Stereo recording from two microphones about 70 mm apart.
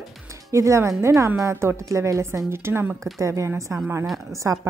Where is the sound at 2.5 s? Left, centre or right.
Right.